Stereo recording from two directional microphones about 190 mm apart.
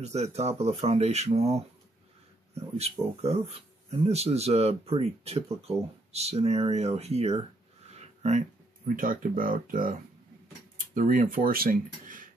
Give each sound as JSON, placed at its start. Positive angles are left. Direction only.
{"t": 0.0, "sound": "speech", "side_deg": -35}
{"t": 2.8, "sound": "speech", "side_deg": -35}
{"t": 11.0, "sound": "speech", "side_deg": -45}